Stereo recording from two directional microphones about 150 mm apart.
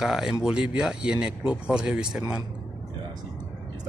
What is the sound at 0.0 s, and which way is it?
Speech, 5° right (ahead or behind).